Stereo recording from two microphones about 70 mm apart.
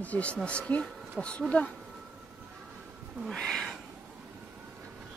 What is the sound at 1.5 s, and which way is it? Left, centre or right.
Speech, left.